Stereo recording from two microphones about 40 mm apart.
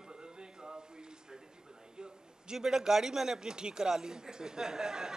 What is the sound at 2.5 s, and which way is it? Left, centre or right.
A man's voice, centre.